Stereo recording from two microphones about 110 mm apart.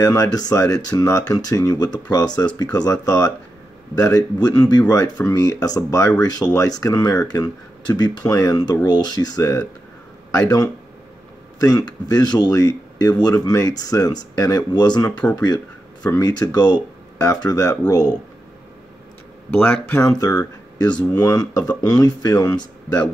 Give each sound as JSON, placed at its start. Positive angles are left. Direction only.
{"t": 0.0, "sound": "speech", "side_deg": 35}
{"t": 11.6, "sound": "speech", "side_deg": 35}
{"t": 19.5, "sound": "speech", "side_deg": 20}